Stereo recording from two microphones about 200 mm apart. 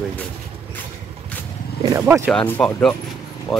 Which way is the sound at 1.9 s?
10° right (ahead or behind).